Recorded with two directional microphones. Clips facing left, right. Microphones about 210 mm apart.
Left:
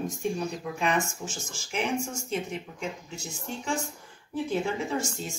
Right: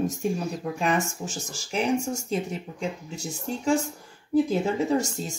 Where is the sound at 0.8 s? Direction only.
40° right (ahead or behind).